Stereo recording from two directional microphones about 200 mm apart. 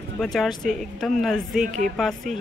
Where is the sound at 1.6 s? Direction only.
40° right (ahead or behind).